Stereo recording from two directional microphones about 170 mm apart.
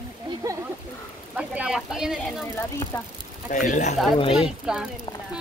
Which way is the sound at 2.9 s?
15° left (ahead or behind).